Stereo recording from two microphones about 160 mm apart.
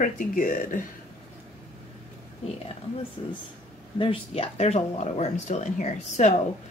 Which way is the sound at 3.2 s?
30° left (ahead or behind).